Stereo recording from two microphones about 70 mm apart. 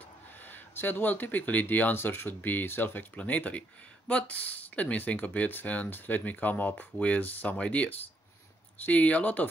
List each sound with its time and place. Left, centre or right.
0.5 s speech: left